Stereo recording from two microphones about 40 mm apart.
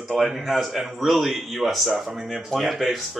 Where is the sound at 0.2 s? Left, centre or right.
Centre.